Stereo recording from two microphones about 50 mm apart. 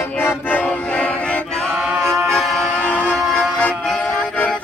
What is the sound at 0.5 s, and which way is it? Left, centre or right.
Music, left.